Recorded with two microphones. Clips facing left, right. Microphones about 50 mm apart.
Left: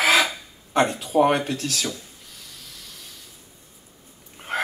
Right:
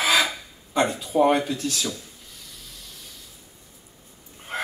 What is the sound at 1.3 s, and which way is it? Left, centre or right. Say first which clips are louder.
Speech: right 1 dB; left.